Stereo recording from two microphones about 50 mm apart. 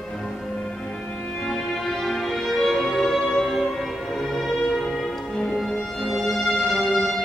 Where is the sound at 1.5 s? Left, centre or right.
Centre.